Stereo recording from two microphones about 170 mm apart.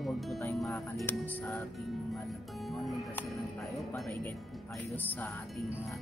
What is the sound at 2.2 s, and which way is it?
Music, centre (ahead or behind).